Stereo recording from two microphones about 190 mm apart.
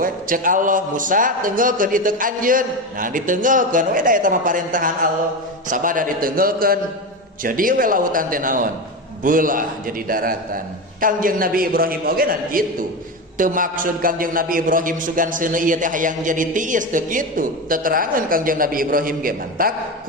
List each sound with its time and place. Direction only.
0.0 s a man's voice: 45° right (ahead or behind)